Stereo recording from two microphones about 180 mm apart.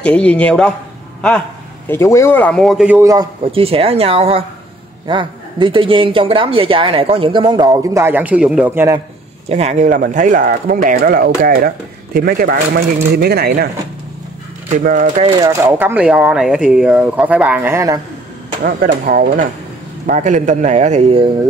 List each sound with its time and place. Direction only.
0.0 s a man's voice: 5° left (ahead or behind)
1.9 s speech: 15° left (ahead or behind); by 3.0 s centre (ahead or behind)
3.0 s speech: 20° right (ahead or behind)
3.5 s a man's voice: 30° right (ahead or behind); by 9.0 s 15° right (ahead or behind)
9.5 s speech: 40° right (ahead or behind); by 13.7 s 60° right (ahead or behind)
14.7 s speech: 45° right (ahead or behind)
15.4 s speech: 15° right (ahead or behind)
18.6 s a man's voice: 55° right (ahead or behind); by 21.3 s 35° right (ahead or behind)